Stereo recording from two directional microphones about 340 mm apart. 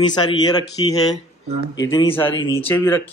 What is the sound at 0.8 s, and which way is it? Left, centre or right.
A man's voice, centre.